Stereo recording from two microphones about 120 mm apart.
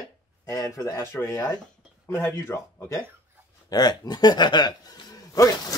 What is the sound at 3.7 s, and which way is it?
A man's voice, 35° left (ahead or behind).